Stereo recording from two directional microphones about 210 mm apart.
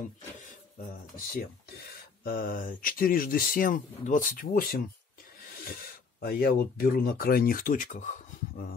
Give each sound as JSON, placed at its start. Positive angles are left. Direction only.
{"t": 2.2, "sound": "speech", "side_deg": 45}